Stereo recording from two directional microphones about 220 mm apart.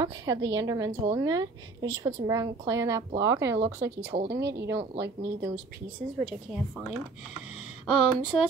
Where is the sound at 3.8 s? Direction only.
55° right (ahead or behind).